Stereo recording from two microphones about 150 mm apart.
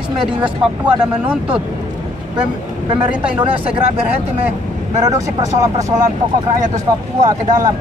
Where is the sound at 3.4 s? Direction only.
40° right (ahead or behind).